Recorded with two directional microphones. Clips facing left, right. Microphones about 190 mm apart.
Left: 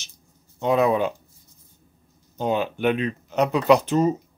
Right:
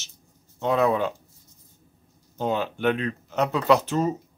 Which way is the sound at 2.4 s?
15° left (ahead or behind).